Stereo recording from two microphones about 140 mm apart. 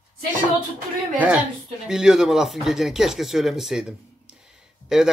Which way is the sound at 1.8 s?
5° right (ahead or behind).